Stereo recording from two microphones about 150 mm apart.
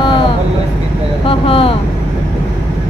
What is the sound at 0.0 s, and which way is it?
Vehicle, 35° left (ahead or behind).